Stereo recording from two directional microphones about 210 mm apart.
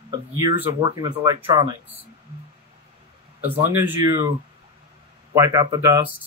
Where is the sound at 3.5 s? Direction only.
10° right (ahead or behind).